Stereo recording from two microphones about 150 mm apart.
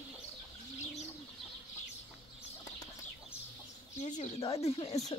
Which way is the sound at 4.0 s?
50° left (ahead or behind).